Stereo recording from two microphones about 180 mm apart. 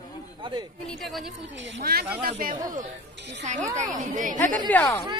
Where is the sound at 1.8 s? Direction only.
60° right (ahead or behind).